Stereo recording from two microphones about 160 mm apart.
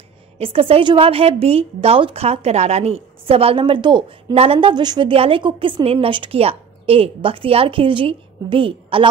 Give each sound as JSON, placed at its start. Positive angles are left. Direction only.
{"t": 0.4, "sound": "a woman's voice", "side_deg": -35}